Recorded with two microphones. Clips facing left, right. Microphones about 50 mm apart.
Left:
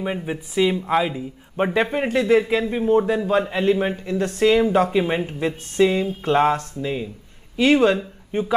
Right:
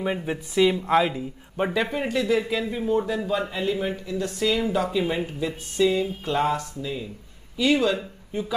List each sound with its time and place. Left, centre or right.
0.0 s speech: centre
1.6 s speech: left
3.3 s speech: left